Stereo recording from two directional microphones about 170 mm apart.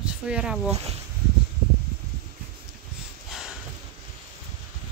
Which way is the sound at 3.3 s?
Centre (ahead or behind).